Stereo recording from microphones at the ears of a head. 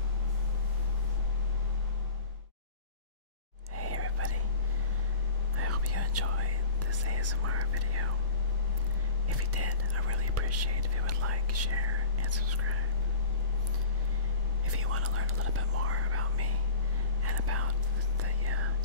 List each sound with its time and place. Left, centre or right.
3.7 s whispering: right
5.6 s whispering: right
9.3 s whispering: right
14.7 s whispering: right